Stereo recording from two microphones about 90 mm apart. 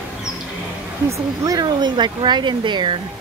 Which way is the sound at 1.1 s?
45° right (ahead or behind).